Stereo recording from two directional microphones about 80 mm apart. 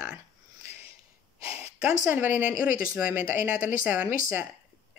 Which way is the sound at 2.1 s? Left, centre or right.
Right.